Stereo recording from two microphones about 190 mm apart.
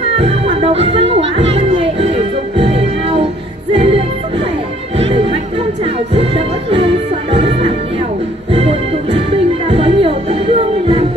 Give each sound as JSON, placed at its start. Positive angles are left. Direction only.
{"t": 0.2, "sound": "speech", "side_deg": -30}
{"t": 1.3, "sound": "music", "side_deg": -30}